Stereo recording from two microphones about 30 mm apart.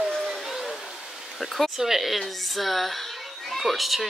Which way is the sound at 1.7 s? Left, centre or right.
Centre.